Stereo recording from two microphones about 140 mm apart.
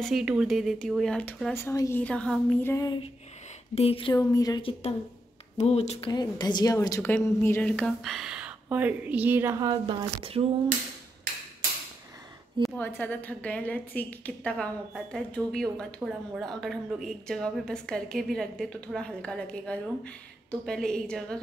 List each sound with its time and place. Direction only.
0.0 s a woman's voice: 5° right (ahead or behind)
2.6 s a woman's voice: 20° left (ahead or behind)
3.7 s speech: 45° left (ahead or behind)
4.1 s a woman's voice: 25° left (ahead or behind)
4.6 s speech: 40° left (ahead or behind)
5.6 s speech: 50° left (ahead or behind)
6.0 s a woman's voice: 30° left (ahead or behind); by 9.6 s 15° right (ahead or behind)
9.6 s speech: 30° right (ahead or behind)
10.4 s a sound: 40° right (ahead or behind)
12.7 s a woman's voice: 15° left (ahead or behind)